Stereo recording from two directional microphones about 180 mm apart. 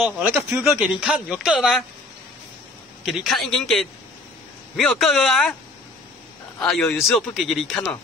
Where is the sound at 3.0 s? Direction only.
Centre (ahead or behind).